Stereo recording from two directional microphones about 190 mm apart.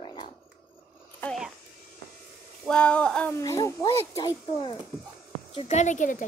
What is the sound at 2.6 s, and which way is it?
A child's voice, 5° left (ahead or behind).